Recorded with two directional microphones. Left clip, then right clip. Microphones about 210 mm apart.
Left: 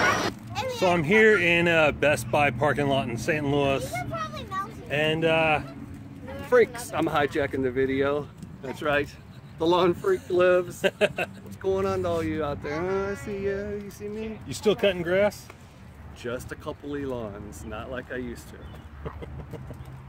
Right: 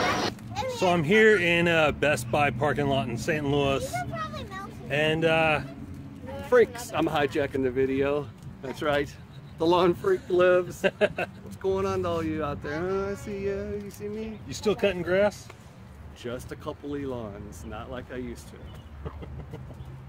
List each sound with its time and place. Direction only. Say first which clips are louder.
0.7 s speech: left 1 dB; 5° right (ahead or behind); by 9.9 s 25° right (ahead or behind)
10.3 s speech: even; 5° left (ahead or behind)
10.8 s speech: left 1 dB; 35° left (ahead or behind)
11.6 s speech: left 1 dB; 10° right (ahead or behind)
14.5 s speech: left 3 dB; 25° left (ahead or behind)
16.2 s speech: left 3 dB; 5° right (ahead or behind)